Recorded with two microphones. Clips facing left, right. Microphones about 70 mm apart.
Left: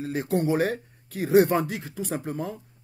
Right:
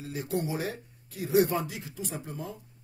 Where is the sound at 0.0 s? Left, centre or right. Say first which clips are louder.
Left 7 dB; left.